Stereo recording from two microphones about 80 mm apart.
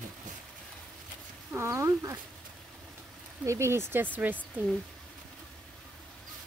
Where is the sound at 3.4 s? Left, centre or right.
Right.